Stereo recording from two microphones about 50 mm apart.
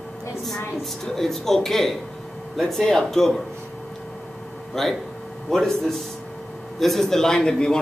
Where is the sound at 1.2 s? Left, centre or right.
Centre.